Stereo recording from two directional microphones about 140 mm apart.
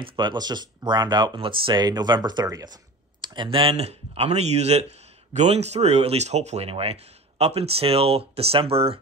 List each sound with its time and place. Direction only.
0.0 s speech: 35° right (ahead or behind)